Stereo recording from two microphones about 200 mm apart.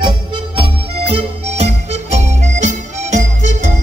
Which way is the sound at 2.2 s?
35° right (ahead or behind).